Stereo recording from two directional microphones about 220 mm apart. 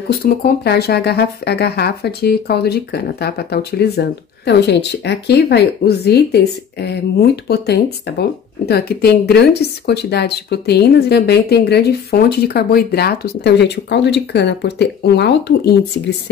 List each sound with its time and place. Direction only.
0.1 s speech: 45° left (ahead or behind)